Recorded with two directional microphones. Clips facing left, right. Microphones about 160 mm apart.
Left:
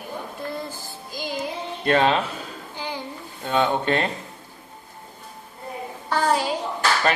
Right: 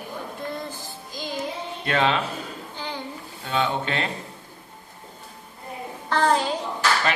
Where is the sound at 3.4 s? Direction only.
40° left (ahead or behind).